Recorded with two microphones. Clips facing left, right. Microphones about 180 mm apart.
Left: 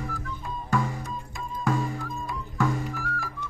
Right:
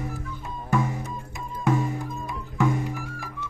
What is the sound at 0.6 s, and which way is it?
Music, 20° right (ahead or behind).